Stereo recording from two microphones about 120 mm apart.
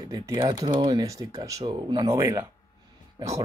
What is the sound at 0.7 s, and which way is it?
Groan, 35° right (ahead or behind).